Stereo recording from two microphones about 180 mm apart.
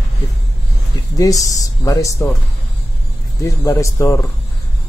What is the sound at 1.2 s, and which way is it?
Speech, 20° left (ahead or behind).